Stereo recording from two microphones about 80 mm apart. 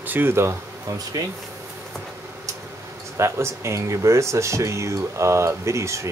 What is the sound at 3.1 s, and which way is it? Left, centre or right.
Speech, right.